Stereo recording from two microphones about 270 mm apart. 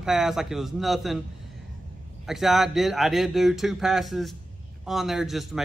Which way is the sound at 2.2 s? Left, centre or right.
Centre.